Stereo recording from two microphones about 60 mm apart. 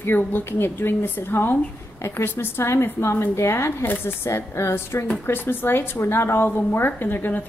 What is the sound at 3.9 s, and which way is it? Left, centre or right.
A woman's voice, left.